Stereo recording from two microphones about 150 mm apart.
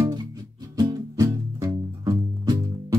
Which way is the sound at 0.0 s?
30° right (ahead or behind).